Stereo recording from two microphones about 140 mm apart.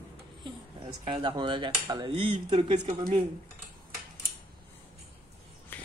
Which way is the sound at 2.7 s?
50° right (ahead or behind).